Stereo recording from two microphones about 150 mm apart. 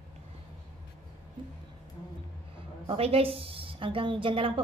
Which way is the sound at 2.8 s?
40° right (ahead or behind).